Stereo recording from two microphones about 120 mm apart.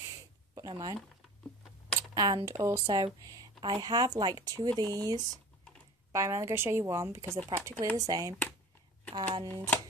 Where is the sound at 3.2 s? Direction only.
30° right (ahead or behind).